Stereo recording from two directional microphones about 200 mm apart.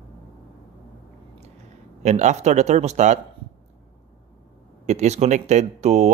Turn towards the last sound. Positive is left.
turn(degrees=-35)  # may be behind; listen again after turning